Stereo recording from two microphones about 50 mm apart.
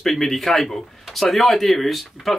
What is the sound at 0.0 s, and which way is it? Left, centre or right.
Speech, centre.